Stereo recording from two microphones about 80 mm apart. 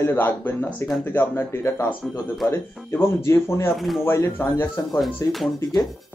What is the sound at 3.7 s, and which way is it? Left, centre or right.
Speech, centre.